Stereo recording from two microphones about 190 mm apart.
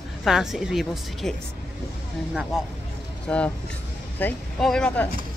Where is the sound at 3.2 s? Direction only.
5° left (ahead or behind).